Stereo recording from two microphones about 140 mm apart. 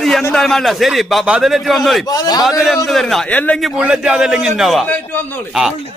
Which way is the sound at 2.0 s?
30° left (ahead or behind).